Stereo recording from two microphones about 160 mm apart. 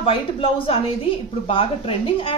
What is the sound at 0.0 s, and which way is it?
A woman's voice, 35° left (ahead or behind).